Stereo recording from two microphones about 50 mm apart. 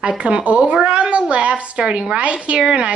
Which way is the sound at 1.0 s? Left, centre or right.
Right.